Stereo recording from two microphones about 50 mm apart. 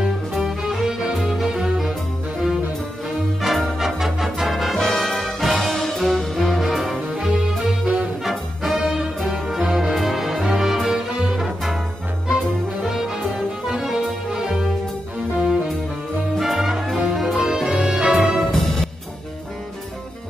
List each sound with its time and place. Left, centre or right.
0.5 s music: centre
3.4 s music: centre
12.8 s music: centre
16.3 s music: centre
18.5 s music: centre